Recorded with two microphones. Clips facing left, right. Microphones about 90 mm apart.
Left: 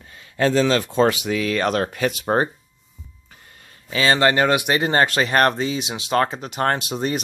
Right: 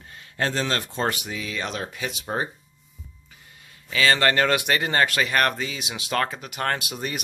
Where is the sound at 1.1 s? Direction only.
85° left; by 2.5 s 55° left (ahead or behind).